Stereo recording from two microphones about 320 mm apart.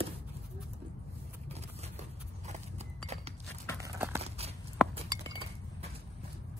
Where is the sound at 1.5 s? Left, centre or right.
Centre.